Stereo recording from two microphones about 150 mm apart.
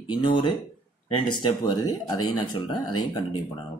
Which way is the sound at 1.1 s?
35° left (ahead or behind).